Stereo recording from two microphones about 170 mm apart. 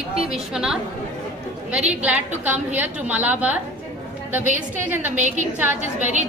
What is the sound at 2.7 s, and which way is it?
Speech, 10° right (ahead or behind).